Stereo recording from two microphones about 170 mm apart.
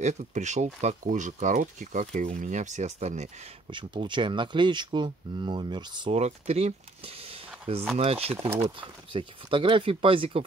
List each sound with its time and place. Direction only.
0.0 s speech: 45° right (ahead or behind)
3.7 s speech: 25° right (ahead or behind)
6.1 s speech: 40° right (ahead or behind)